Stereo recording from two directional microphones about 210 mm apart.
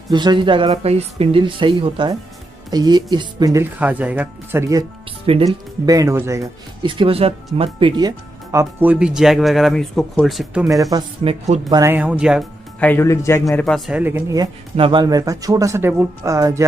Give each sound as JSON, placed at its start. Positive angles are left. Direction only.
{"t": 0.1, "sound": "speech", "side_deg": -20}
{"t": 5.2, "sound": "speech", "side_deg": -25}
{"t": 5.9, "sound": "speech", "side_deg": -15}
{"t": 10.7, "sound": "speech", "side_deg": -15}
{"t": 12.8, "sound": "speech", "side_deg": 10}